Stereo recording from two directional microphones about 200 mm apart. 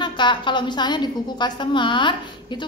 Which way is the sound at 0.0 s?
25° left (ahead or behind).